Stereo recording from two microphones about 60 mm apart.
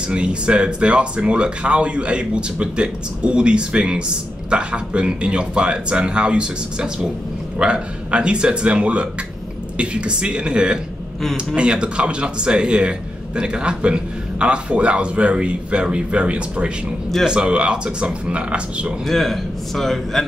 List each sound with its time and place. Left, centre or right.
0.1 s a man's voice: centre
19.0 s a man's voice: centre